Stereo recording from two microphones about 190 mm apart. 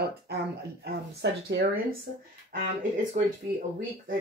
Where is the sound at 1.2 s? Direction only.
60° right (ahead or behind).